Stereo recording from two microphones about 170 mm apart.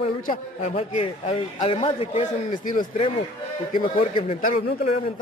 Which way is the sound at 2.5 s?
50° left (ahead or behind).